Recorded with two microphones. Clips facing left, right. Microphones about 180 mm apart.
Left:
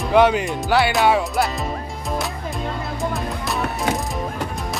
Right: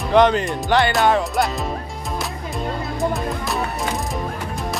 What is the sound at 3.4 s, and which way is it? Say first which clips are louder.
Music: left 1 dB; centre (ahead or behind).